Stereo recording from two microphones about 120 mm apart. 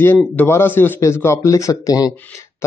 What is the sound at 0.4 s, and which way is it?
Speech, 20° left (ahead or behind).